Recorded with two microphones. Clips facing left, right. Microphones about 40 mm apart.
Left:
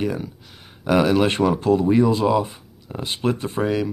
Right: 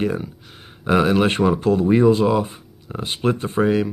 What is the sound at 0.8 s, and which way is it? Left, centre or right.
Speech, centre.